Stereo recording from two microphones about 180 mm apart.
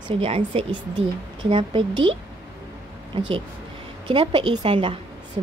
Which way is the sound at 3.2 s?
30° right (ahead or behind).